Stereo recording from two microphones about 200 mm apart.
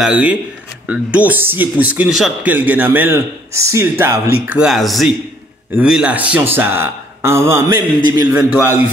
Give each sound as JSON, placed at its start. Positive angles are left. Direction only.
{"t": 0.0, "sound": "speech", "side_deg": -5}